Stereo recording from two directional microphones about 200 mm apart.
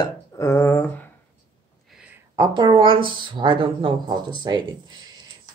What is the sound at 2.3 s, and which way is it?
Speech, 20° right (ahead or behind).